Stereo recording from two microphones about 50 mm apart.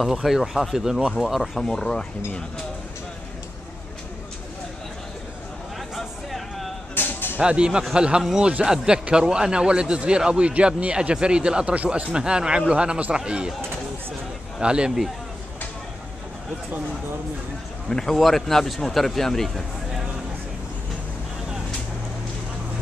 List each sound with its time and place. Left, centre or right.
0.0 s a man's voice: centre
1.6 s speech: centre
5.9 s a sound: centre
7.0 s music: left
7.3 s speech: right
12.1 s speech: centre
14.6 s speech: centre
17.8 s a man's voice: centre